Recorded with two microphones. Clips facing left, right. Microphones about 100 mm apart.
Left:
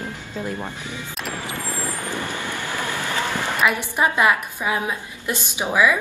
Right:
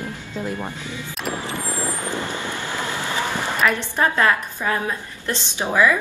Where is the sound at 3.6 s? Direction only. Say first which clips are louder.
Even; 10° left (ahead or behind).